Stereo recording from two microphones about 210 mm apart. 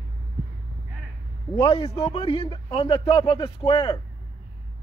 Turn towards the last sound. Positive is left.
turn(degrees=20)  # may be behind; listen again after turning